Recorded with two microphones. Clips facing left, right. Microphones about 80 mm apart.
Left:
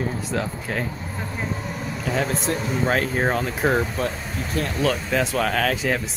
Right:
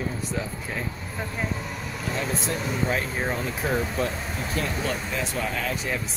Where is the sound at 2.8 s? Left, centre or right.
Left.